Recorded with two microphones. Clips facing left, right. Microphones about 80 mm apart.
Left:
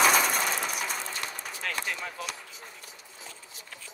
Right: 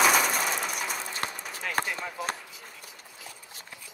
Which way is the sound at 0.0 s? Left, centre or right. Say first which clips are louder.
Even; centre.